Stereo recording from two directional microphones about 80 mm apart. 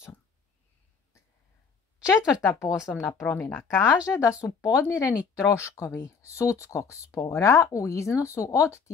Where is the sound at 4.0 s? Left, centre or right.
Centre.